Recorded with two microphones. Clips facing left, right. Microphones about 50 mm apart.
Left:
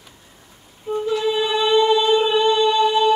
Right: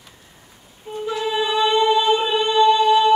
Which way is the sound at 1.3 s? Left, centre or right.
Centre.